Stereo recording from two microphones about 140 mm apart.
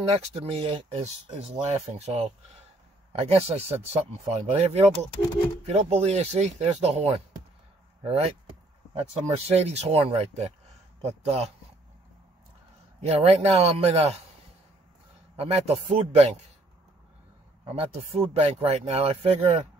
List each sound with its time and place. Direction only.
0.0 s speech: 45° right (ahead or behind)
13.0 s speech: 50° right (ahead or behind)
15.3 s speech: 50° right (ahead or behind)
17.7 s speech: 45° right (ahead or behind)